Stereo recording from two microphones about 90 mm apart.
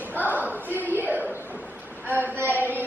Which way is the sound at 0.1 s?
20° right (ahead or behind).